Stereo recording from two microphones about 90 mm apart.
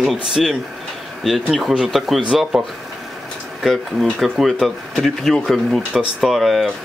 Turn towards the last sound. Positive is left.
turn(degrees=0)  # may be behind; listen again after turning